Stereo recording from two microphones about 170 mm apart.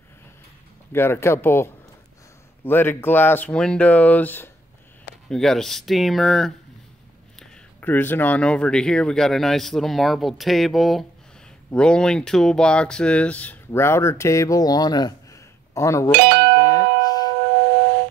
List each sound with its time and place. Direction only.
0.9 s speech: 15° left (ahead or behind)
16.3 s a sound: 70° right (ahead or behind)
16.5 s tubular bells: 20° left (ahead or behind)